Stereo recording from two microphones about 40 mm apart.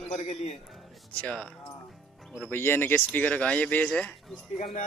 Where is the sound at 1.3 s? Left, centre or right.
Centre.